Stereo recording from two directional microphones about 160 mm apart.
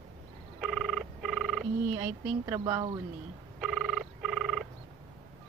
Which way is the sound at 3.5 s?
Centre (ahead or behind).